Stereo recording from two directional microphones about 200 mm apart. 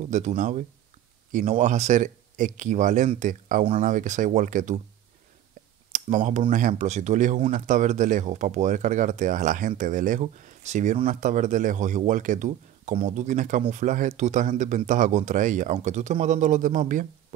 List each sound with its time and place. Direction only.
0.1 s speech: 35° right (ahead or behind)
5.9 s a sound: 35° right (ahead or behind)
6.5 s speech: 40° right (ahead or behind)